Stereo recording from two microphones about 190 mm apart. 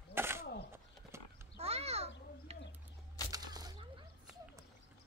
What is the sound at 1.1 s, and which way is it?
Horse, 15° right (ahead or behind).